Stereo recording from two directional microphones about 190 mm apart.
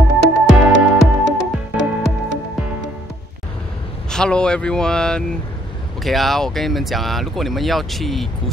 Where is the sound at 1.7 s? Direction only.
70° left (ahead or behind).